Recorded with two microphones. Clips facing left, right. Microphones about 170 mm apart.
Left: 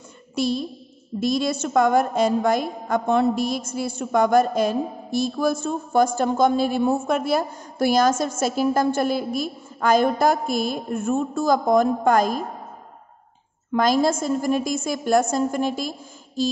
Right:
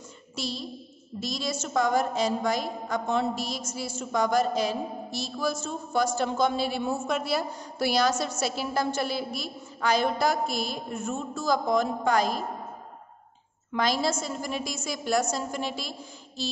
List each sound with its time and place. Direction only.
0.4 s a woman's voice: 55° left (ahead or behind)
13.7 s a woman's voice: 45° left (ahead or behind)